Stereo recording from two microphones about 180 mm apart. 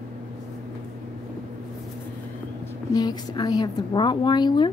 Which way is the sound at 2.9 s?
20° left (ahead or behind).